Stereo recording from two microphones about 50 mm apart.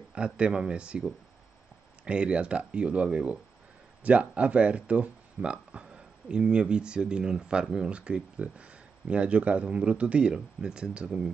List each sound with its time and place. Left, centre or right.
0.1 s speech: centre
2.0 s speech: right